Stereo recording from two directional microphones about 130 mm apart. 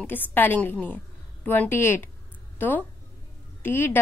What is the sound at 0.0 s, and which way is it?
A woman's voice, 15° left (ahead or behind).